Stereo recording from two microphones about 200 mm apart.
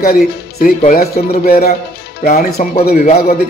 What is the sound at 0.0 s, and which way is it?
Speech, 50° left (ahead or behind).